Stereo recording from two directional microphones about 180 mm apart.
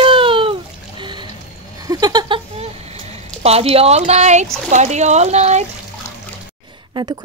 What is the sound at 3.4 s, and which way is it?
Speech, 35° right (ahead or behind).